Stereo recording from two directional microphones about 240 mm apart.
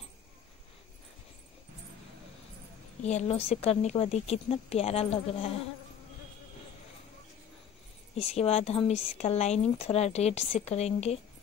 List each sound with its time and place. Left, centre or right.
3.0 s a woman's voice: left
8.2 s speech: left